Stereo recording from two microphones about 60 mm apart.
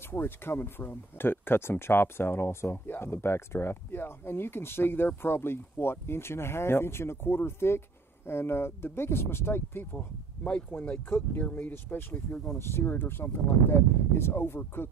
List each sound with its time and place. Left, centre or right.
0.1 s speech: left
12.4 s speech: left